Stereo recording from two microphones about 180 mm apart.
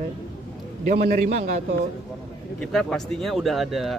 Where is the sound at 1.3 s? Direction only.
40° right (ahead or behind).